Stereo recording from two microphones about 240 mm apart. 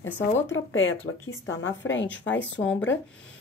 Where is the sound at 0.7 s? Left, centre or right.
Left.